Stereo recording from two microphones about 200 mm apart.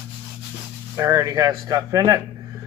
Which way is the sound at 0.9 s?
15° right (ahead or behind).